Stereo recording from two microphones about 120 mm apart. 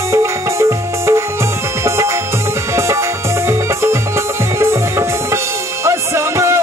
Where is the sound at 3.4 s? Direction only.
20° right (ahead or behind).